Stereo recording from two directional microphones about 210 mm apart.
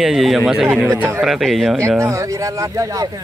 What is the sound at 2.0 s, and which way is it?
Speech, 15° right (ahead or behind).